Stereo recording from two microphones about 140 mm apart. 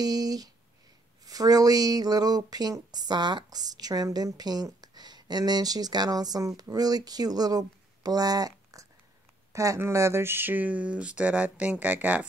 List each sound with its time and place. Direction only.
0.0 s speech: 30° right (ahead or behind); by 12.3 s 10° right (ahead or behind)